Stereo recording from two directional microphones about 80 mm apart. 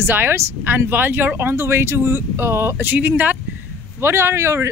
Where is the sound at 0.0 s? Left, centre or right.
Right.